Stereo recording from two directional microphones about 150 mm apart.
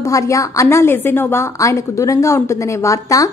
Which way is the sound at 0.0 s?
20° left (ahead or behind).